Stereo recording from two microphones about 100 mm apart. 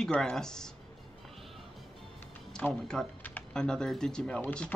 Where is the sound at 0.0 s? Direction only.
5° left (ahead or behind).